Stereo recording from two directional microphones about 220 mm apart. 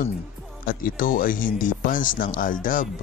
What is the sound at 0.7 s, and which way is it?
Speech, 40° left (ahead or behind).